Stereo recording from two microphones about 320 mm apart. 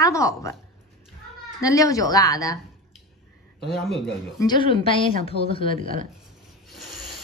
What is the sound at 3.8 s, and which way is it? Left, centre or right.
Speech, centre.